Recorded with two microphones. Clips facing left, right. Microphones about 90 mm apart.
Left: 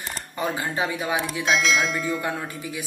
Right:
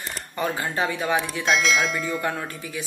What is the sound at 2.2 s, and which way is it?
Speech, 10° left (ahead or behind).